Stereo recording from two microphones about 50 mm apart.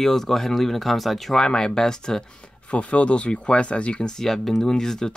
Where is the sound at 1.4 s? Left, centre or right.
Centre.